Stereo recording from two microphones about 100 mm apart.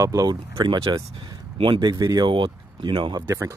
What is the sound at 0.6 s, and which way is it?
Speech, 50° right (ahead or behind).